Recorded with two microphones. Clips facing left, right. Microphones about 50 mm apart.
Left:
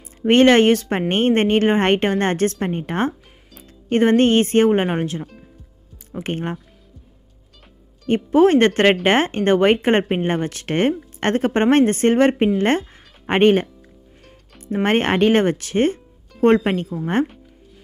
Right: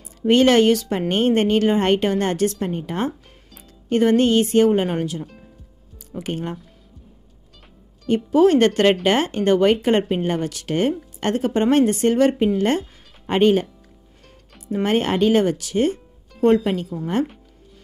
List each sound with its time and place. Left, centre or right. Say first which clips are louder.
0.2 s speech: left 2 dB; left
5.2 s music: left 1 dB; centre
6.1 s speech: left 2 dB; left
8.1 s a woman's voice: left 1 dB; left
14.7 s speech: left 2 dB; left